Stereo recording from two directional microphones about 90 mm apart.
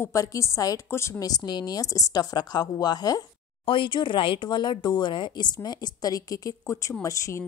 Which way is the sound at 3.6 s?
65° left (ahead or behind).